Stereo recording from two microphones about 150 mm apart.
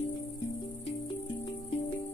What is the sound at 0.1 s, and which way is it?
Music, 30° left (ahead or behind).